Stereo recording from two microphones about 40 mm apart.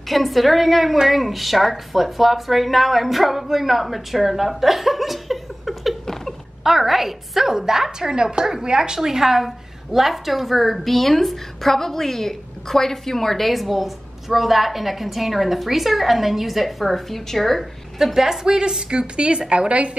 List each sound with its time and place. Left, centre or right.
0.1 s a woman's voice: centre
17.9 s a woman's voice: centre; by 20.0 s right